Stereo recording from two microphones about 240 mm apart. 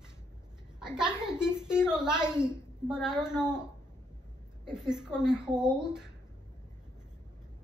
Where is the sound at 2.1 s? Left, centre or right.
Centre.